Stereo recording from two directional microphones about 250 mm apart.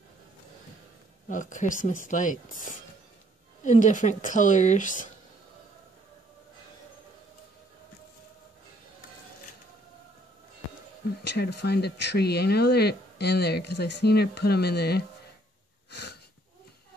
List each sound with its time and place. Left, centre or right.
1.3 s speech: left
3.6 s speech: left
11.2 s speech: left
15.9 s wheeze: left